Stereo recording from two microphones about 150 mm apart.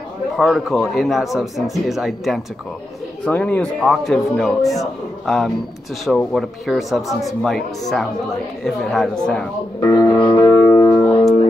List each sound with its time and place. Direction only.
0.4 s speech: centre (ahead or behind)
3.3 s speech: 10° left (ahead or behind)
8.6 s speech: centre (ahead or behind)
9.8 s music: 25° left (ahead or behind)